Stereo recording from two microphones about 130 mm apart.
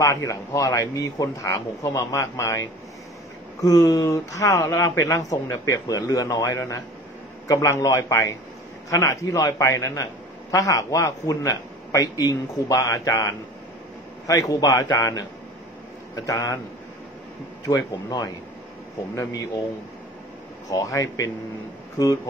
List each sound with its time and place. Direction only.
0.0 s speech: 25° left (ahead or behind)
3.6 s speech: 30° left (ahead or behind)
16.3 s speech: 25° left (ahead or behind)
17.6 s speech: 25° left (ahead or behind)
20.7 s speech: 25° left (ahead or behind)